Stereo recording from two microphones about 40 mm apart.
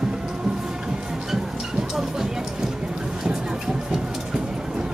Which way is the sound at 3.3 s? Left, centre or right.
Centre.